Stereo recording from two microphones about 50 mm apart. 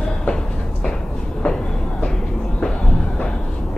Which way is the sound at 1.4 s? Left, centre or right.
Centre.